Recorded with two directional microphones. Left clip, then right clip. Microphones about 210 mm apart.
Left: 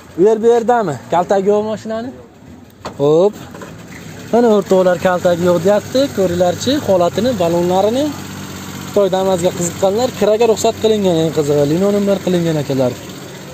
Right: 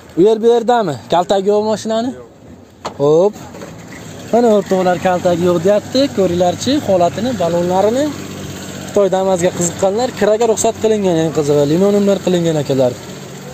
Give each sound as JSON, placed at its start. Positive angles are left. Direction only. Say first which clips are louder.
{"t": 0.5, "sound": "speech", "louder": "even", "side_deg": -35}
{"t": 3.0, "sound": "speech", "louder": "even", "side_deg": 5}
{"t": 7.2, "sound": "speech", "louder": "left 1 dB", "side_deg": 25}
{"t": 8.9, "sound": "speech", "louder": "right 1 dB", "side_deg": -5}